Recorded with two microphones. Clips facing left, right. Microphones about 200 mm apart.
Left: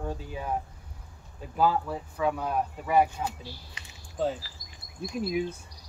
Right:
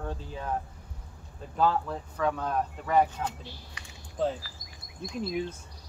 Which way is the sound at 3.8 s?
20° left (ahead or behind).